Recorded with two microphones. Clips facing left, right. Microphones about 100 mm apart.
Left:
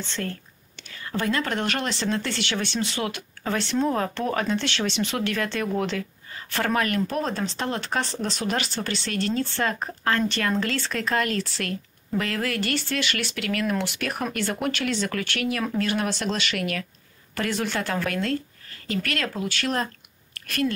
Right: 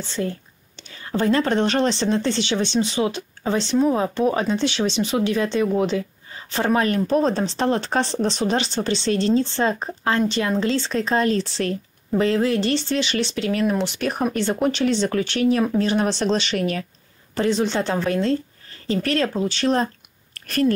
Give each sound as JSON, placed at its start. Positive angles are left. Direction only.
{"t": 0.1, "sound": "a woman's voice", "side_deg": -15}